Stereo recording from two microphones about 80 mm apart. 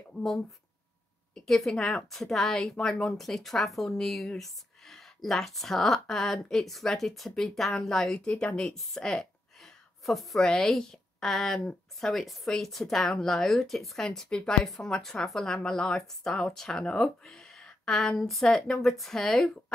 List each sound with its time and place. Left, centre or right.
0.1 s a woman's voice: centre